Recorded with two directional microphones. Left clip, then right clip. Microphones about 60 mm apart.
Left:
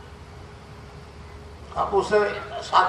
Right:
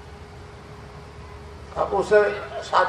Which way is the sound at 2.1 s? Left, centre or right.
Left.